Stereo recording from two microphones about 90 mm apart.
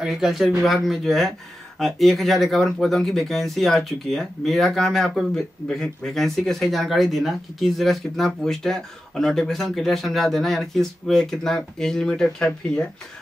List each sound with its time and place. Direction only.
0.0 s speech: 5° right (ahead or behind)